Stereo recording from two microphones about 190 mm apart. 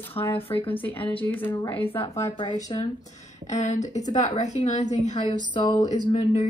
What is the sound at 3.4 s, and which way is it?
A woman's voice, 40° left (ahead or behind).